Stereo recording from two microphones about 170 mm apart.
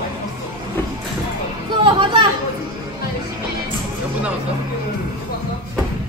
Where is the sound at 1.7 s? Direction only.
30° right (ahead or behind).